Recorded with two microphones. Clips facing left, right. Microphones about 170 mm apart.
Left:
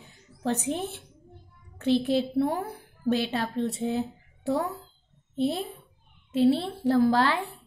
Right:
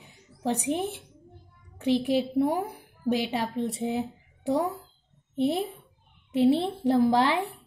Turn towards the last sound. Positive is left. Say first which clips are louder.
# right 1 dB
turn(degrees=-20)  # may be behind; listen again after turning